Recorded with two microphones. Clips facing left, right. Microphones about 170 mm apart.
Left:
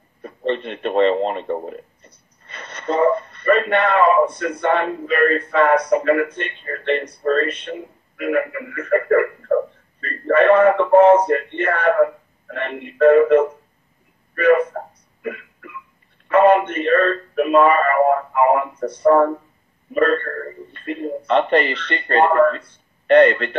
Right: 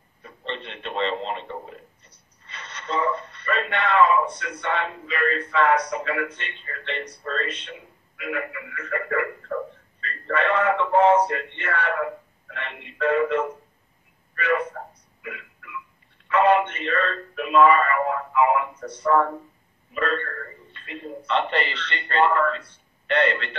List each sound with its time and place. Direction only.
0.2 s a man's voice: 50° left (ahead or behind)
16.3 s a man's voice: 50° left (ahead or behind)